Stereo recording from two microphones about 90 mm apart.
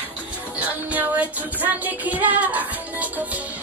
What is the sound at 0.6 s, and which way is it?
Music, 15° right (ahead or behind).